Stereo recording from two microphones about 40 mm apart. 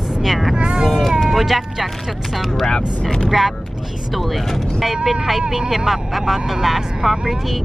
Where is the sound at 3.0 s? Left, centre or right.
Centre.